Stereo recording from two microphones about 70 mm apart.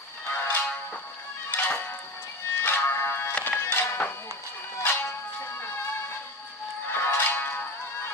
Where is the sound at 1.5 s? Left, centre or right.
Left.